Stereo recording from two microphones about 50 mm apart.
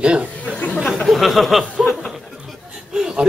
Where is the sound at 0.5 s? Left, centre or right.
Left.